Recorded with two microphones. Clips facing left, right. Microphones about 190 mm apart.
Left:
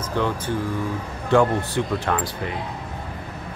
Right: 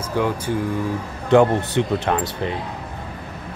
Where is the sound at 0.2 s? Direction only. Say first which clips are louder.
Right 2 dB; 10° right (ahead or behind).